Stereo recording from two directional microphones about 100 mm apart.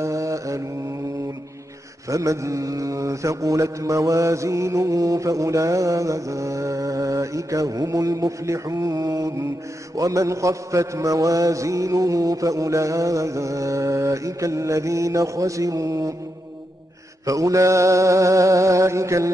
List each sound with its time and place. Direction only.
0.0 s mantra: 30° right (ahead or behind)
2.0 s mantra: 30° right (ahead or behind)
17.3 s mantra: 35° right (ahead or behind)